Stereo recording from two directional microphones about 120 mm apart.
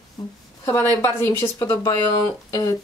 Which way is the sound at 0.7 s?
25° left (ahead or behind).